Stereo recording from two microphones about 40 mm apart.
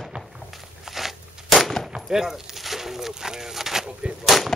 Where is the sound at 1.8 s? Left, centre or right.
Centre.